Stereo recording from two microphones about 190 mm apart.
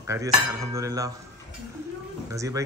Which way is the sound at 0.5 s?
15° right (ahead or behind).